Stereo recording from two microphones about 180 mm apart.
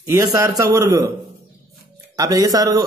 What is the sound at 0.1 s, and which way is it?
Speech, 20° right (ahead or behind).